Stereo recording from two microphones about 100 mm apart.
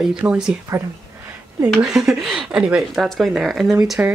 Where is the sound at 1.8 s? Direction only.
5° right (ahead or behind).